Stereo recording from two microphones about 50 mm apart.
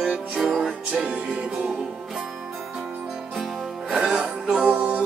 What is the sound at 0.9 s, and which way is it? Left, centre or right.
Music, right.